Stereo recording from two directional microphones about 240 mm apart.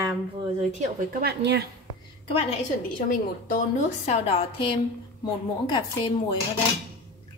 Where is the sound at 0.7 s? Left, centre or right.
Right.